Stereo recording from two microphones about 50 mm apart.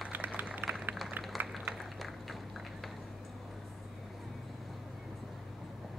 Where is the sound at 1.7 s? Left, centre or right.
Centre.